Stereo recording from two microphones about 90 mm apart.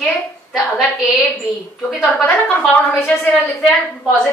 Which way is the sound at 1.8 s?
Centre (ahead or behind).